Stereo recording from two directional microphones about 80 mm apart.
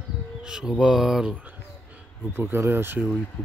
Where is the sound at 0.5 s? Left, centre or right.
Centre.